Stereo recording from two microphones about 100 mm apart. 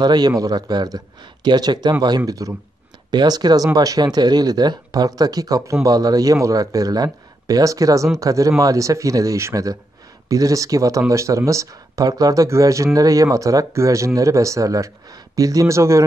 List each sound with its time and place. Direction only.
0.0 s speech: 45° right (ahead or behind)